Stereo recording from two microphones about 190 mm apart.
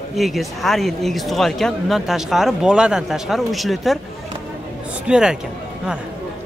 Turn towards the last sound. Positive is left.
turn(degrees=-5)  # may be behind; listen again after turning